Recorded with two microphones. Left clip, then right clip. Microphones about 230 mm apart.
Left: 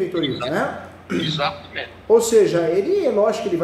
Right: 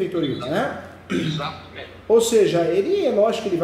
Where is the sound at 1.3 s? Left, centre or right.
Left.